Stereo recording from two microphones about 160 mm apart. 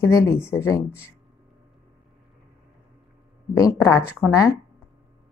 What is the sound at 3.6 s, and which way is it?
Speech, 20° left (ahead or behind).